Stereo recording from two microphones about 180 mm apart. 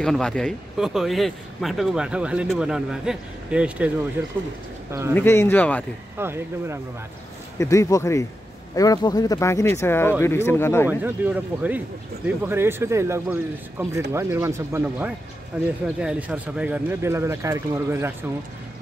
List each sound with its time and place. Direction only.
0.0 s speech: 5° left (ahead or behind)
5.1 s speech: 15° left (ahead or behind)
6.1 s speech: 15° right (ahead or behind)
7.5 s speech: 15° left (ahead or behind)
10.9 s speech: 10° right (ahead or behind)